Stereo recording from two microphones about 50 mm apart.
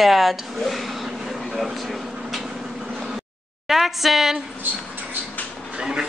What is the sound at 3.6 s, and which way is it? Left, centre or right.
Speech, centre.